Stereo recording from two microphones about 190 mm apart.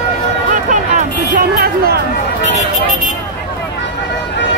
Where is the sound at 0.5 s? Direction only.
45° right (ahead or behind).